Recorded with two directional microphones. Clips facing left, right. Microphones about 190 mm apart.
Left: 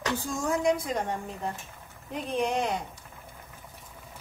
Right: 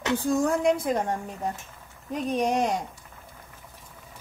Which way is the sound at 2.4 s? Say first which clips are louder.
Right 2 dB; 40° right (ahead or behind).